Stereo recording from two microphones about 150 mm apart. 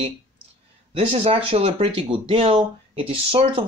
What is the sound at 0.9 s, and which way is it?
Speech, 40° right (ahead or behind).